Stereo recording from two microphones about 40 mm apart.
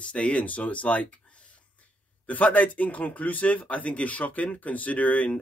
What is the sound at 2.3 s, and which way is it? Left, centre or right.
Speech, left.